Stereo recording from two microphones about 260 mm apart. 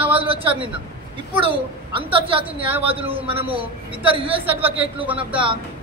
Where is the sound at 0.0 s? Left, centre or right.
Centre.